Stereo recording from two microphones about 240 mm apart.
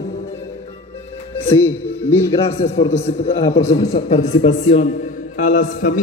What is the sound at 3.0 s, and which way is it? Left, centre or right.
A man's voice, left.